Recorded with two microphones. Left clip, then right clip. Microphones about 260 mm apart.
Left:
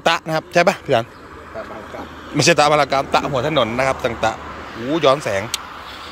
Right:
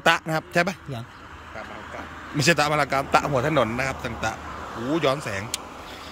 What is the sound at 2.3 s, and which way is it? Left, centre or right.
A man's voice, centre.